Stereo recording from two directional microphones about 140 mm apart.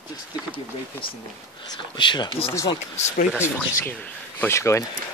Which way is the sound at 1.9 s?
35° left (ahead or behind).